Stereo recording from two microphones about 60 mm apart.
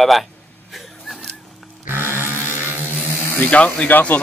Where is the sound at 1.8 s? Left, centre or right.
Right.